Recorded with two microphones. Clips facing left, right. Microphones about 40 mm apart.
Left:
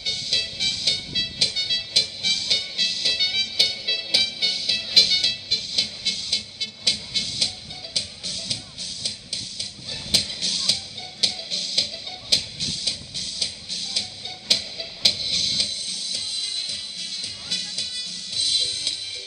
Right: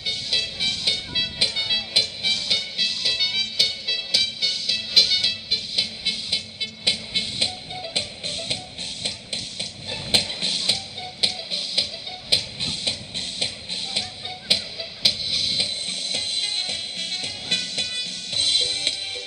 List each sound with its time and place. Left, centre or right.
0.6 s music: centre
12.6 s music: right
14.5 s music: centre
15.5 s music: right